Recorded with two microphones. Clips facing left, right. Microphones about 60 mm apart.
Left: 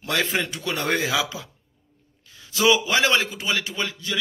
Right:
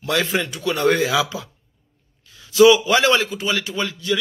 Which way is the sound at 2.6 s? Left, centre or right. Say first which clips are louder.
Right 7 dB; centre.